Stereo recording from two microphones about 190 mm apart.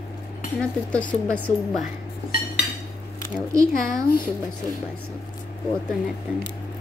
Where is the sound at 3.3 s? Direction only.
15° right (ahead or behind).